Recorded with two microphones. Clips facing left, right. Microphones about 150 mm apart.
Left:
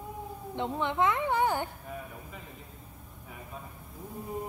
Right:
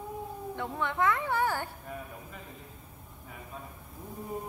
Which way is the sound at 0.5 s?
20° left (ahead or behind).